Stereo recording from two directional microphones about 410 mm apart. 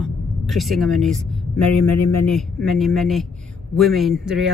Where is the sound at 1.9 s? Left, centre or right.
Left.